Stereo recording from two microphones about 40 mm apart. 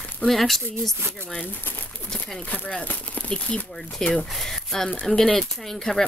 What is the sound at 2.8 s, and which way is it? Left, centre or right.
Speech, left.